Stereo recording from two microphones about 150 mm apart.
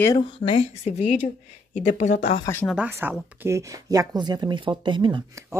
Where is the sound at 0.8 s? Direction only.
50° left (ahead or behind).